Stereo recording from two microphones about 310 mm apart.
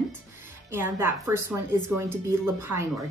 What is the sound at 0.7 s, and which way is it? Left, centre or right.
A woman's voice, centre.